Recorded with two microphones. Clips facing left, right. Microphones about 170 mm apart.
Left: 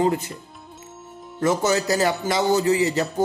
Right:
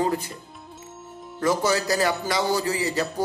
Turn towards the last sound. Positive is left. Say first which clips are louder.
# left 5 dB
turn(degrees=25)  # may be behind; listen again after turning